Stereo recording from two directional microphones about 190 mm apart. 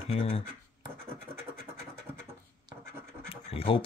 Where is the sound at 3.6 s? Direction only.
25° left (ahead or behind).